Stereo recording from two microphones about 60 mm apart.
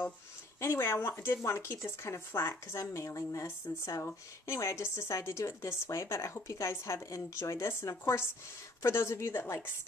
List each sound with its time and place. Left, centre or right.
0.6 s speech: left
1.2 s speech: left
3.4 s speech: left
4.5 s speech: left